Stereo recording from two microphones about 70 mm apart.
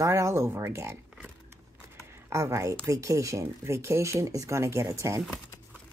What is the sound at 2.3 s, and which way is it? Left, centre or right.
Speech, right.